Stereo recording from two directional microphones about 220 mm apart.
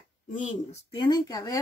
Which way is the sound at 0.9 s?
20° left (ahead or behind).